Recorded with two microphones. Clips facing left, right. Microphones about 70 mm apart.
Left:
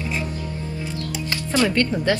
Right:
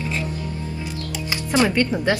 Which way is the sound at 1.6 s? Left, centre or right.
Centre.